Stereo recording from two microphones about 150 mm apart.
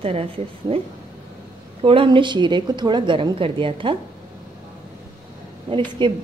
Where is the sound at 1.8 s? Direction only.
35° right (ahead or behind).